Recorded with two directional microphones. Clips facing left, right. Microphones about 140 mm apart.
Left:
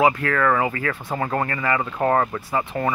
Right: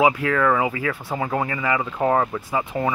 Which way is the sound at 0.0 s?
10° right (ahead or behind).